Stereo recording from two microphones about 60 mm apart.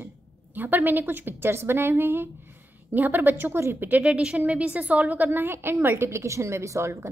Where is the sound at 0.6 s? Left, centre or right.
Right.